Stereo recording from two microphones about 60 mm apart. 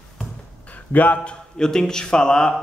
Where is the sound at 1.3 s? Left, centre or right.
Centre.